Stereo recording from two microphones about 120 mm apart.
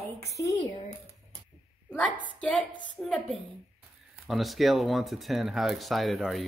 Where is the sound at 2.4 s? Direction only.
10° left (ahead or behind).